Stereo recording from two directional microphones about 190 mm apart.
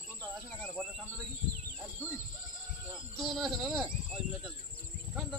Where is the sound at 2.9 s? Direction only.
Centre (ahead or behind).